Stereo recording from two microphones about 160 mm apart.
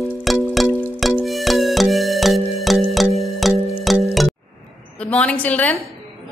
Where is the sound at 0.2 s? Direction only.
Centre (ahead or behind).